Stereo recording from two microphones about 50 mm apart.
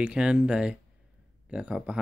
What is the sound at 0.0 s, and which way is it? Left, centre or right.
Speech, centre.